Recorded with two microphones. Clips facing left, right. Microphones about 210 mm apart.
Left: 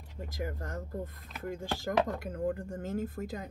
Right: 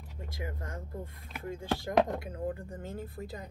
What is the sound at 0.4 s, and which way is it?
Speech, 45° left (ahead or behind).